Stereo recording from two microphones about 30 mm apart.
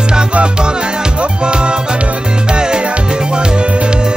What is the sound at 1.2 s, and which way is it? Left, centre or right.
Music, right.